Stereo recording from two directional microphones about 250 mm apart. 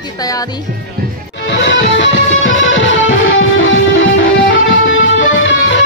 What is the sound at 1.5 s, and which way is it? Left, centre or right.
Music, left.